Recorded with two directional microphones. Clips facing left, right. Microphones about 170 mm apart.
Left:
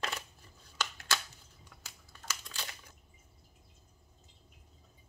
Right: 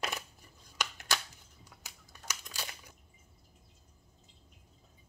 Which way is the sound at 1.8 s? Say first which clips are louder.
Even; 15° right (ahead or behind).